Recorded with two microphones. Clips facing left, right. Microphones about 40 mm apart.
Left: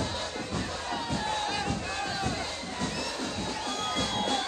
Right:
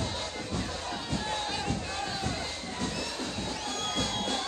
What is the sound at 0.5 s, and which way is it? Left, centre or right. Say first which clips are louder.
Run: left 2 dB; left.